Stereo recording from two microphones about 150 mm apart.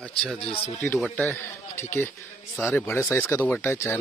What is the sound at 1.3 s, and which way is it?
Speech, 15° left (ahead or behind).